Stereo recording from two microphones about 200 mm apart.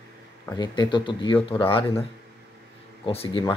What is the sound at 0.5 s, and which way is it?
Speech, 20° left (ahead or behind).